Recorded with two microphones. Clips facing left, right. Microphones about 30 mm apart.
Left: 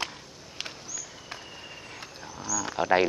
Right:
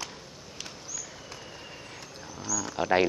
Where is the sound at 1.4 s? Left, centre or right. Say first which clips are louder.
Left 1 dB; centre.